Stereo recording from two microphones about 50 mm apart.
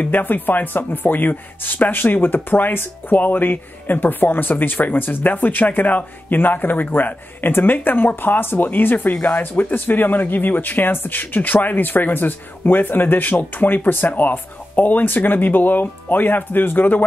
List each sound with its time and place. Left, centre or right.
0.0 s speech: left
9.6 s speech: left